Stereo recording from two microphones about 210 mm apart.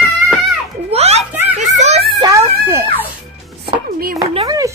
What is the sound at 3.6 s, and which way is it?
Music, 45° right (ahead or behind).